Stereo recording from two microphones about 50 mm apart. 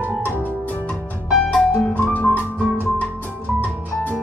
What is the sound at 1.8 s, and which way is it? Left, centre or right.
Music, left.